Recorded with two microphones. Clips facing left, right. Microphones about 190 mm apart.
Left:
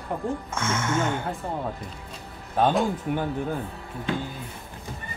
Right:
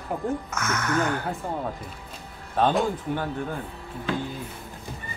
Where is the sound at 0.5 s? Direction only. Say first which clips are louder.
Even; 25° left (ahead or behind).